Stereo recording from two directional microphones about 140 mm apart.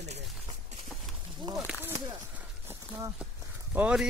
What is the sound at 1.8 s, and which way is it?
Speech, 15° right (ahead or behind).